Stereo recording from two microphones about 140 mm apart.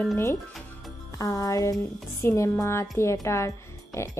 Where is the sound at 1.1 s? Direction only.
25° left (ahead or behind).